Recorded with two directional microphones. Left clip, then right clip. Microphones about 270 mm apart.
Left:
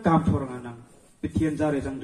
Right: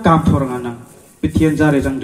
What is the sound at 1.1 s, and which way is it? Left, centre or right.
Speech, right.